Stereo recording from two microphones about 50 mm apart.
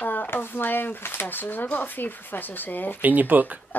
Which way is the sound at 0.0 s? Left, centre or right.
Left.